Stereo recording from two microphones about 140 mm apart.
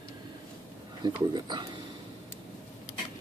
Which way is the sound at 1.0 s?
30° right (ahead or behind).